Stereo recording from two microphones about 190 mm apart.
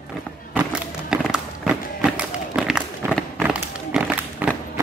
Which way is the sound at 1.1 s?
5° right (ahead or behind).